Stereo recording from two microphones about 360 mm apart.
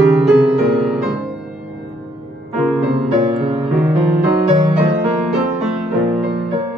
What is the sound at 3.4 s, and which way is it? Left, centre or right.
Music, centre.